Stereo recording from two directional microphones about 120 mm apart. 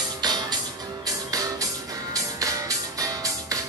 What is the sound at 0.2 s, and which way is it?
Music, 35° right (ahead or behind).